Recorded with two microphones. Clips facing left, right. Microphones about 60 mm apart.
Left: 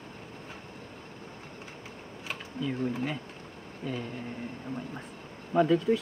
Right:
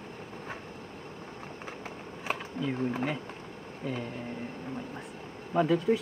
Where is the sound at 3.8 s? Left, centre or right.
Right.